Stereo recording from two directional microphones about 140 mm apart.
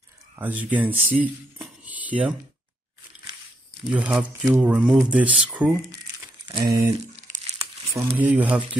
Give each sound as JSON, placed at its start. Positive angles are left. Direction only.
{"t": 0.4, "sound": "speech", "side_deg": -10}
{"t": 3.9, "sound": "speech", "side_deg": -10}
{"t": 6.4, "sound": "crumpling", "side_deg": -30}
{"t": 7.2, "sound": "crumpling", "side_deg": -60}
{"t": 7.9, "sound": "speech", "side_deg": -15}